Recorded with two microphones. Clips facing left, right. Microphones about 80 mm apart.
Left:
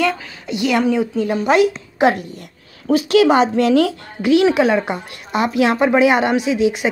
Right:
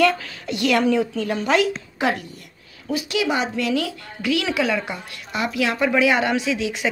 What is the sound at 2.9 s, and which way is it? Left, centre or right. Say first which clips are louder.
A woman's voice: left 10 dB; left.